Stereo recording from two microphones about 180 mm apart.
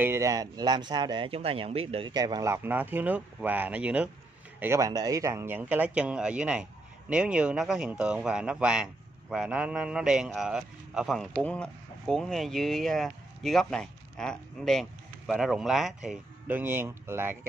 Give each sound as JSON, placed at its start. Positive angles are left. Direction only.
{"t": 0.0, "sound": "a man's voice", "side_deg": -15}